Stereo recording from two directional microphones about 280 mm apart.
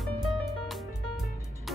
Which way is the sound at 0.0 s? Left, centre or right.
Centre.